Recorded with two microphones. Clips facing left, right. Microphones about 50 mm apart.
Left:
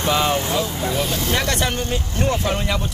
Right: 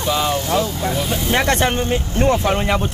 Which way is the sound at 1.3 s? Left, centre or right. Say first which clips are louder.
Right 8 dB; right.